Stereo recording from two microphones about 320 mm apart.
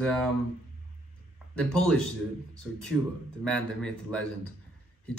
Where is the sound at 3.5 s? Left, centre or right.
Centre.